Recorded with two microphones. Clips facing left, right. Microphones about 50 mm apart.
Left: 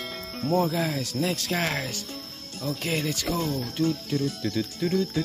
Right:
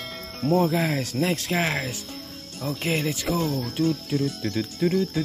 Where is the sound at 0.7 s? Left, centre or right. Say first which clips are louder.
Right 3 dB; right.